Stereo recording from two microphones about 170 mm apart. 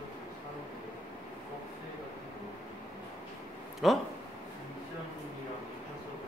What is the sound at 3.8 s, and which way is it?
Speech, centre (ahead or behind).